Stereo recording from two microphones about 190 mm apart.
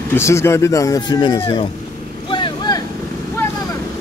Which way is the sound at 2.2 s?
25° left (ahead or behind).